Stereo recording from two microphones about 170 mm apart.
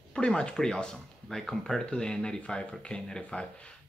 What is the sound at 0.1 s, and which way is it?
Speech, 5° left (ahead or behind).